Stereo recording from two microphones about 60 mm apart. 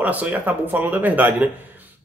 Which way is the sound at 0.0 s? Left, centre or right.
Right.